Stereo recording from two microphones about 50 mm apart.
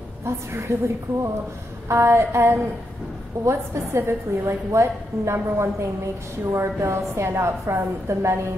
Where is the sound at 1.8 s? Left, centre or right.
Right.